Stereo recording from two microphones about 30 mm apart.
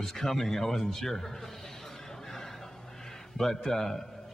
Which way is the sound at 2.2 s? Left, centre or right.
Centre.